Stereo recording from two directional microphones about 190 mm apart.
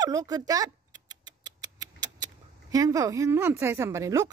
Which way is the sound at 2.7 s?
20° right (ahead or behind).